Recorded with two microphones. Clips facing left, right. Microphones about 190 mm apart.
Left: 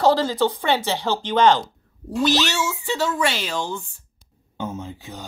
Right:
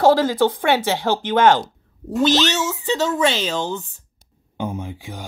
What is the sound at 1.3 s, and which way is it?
Speech, 55° right (ahead or behind).